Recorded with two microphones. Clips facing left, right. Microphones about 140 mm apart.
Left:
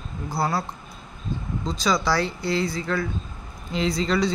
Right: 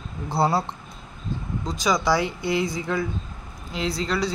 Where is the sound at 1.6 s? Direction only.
15° right (ahead or behind).